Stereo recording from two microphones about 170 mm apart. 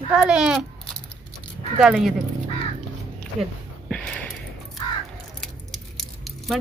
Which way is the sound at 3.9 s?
5° left (ahead or behind).